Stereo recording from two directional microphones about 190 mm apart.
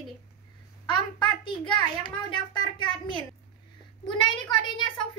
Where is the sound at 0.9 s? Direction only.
25° left (ahead or behind).